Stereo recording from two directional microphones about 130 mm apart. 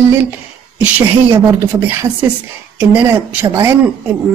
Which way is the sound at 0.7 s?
15° right (ahead or behind).